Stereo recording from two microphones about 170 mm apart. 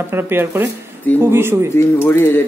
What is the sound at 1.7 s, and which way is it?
Speech, 15° left (ahead or behind).